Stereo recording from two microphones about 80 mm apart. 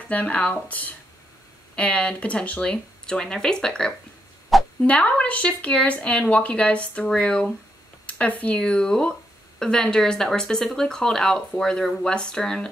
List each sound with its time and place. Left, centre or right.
0.1 s speech: centre
4.5 s a sound: centre
4.8 s speech: centre